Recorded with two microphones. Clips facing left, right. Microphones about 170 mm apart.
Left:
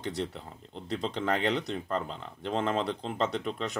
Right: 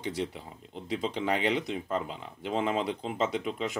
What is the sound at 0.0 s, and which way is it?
Speech, 5° right (ahead or behind).